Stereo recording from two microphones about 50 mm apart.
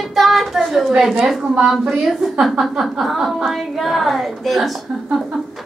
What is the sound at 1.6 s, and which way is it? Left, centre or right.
A woman's voice, centre.